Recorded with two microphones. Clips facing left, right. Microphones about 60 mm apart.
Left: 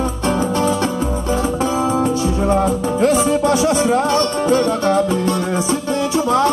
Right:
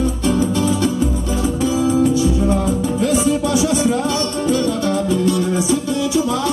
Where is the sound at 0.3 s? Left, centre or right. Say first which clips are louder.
Left 1 dB; left.